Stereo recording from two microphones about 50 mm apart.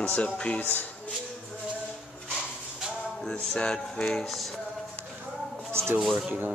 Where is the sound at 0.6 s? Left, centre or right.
Left.